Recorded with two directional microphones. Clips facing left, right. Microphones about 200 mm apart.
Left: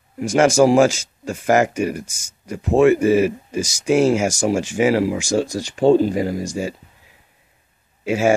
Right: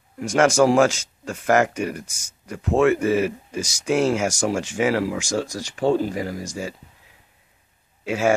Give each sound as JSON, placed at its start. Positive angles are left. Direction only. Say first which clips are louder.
{"t": 0.2, "sound": "speech", "louder": "left 3 dB", "side_deg": 5}
{"t": 5.3, "sound": "speech", "louder": "left 5 dB", "side_deg": 25}
{"t": 8.0, "sound": "speech", "louder": "left 4 dB", "side_deg": 10}